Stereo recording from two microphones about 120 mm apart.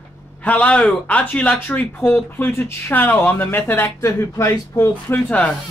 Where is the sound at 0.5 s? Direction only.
10° left (ahead or behind).